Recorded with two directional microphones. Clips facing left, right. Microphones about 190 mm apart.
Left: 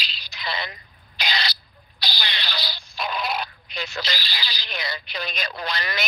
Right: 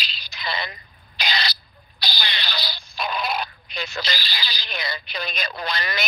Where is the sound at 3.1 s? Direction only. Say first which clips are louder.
Right 1 dB; 50° right (ahead or behind).